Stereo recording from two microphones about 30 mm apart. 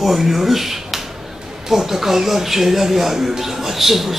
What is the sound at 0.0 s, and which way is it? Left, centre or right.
A man's voice, centre.